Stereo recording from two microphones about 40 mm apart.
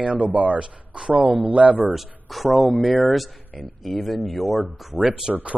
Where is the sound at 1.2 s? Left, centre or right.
Right.